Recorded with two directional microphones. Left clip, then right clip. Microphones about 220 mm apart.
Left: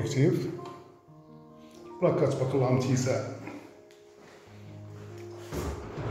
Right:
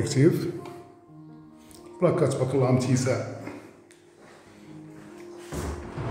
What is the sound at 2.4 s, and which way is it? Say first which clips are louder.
Speech: right 3 dB; 15° right (ahead or behind).